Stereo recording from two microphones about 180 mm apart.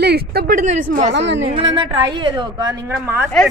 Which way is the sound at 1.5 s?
25° right (ahead or behind).